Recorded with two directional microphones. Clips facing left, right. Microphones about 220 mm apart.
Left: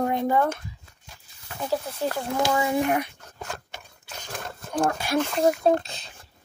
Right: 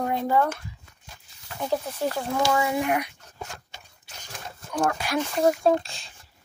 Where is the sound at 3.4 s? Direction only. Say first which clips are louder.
Left 6 dB; 60° left (ahead or behind).